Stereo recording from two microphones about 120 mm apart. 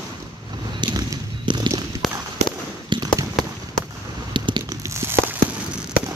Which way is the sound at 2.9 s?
35° right (ahead or behind).